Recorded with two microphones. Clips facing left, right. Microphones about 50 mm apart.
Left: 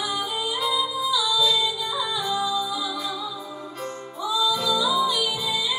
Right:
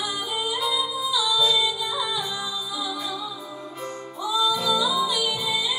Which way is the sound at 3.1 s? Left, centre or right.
Left.